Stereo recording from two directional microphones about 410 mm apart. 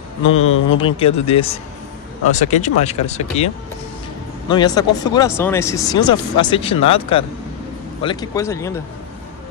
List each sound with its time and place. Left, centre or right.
0.3 s speech: left
0.7 s speech: centre